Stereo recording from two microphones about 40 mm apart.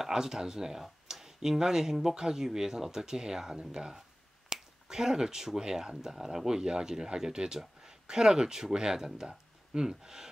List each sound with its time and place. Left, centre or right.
0.0 s speech: centre